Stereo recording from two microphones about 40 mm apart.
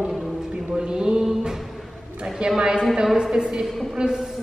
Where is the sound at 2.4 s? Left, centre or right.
Right.